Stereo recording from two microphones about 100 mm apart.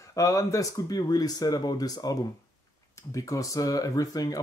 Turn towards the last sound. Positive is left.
turn(degrees=35)  # may be behind; listen again after turning